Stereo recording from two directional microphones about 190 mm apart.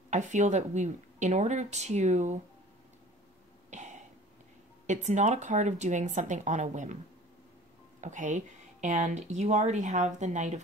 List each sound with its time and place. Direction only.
0.1 s speech: 40° right (ahead or behind)
3.7 s throat clearing: 40° right (ahead or behind)
4.8 s speech: 40° right (ahead or behind)
8.0 s speech: 40° right (ahead or behind)